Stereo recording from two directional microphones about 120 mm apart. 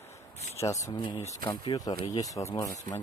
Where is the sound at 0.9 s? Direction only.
45° left (ahead or behind).